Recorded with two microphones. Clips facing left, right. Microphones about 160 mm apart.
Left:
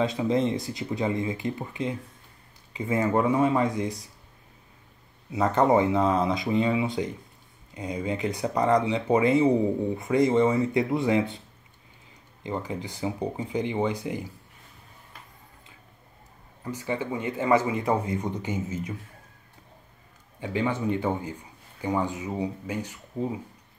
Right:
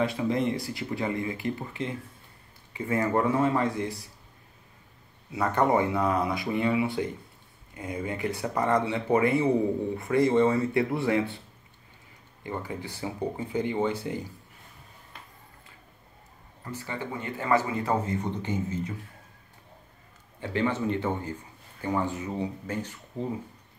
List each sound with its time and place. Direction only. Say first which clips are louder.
0.0 s speech: left 2 dB; 20° left (ahead or behind)
5.3 s speech: left 3 dB; 20° left (ahead or behind)
12.4 s speech: left 3 dB; 20° left (ahead or behind)
16.6 s speech: left 5 dB; 15° left (ahead or behind)
20.3 s speech: even; 15° left (ahead or behind)